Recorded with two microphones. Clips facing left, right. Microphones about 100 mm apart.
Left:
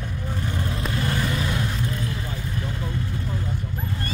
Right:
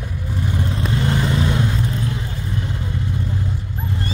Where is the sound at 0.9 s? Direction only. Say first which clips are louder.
Right 5 dB; 25° right (ahead or behind).